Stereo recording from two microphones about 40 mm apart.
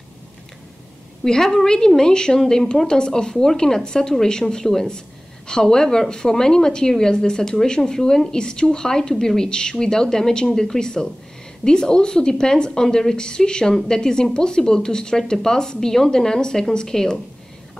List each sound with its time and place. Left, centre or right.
1.2 s a woman's voice: centre